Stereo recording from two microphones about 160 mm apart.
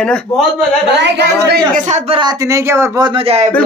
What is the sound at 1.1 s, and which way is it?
Speech, 90° right.